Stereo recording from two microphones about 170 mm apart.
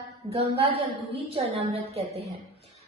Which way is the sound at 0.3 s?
35° right (ahead or behind).